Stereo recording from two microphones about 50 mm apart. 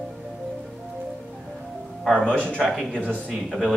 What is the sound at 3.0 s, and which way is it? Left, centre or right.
Speech, centre.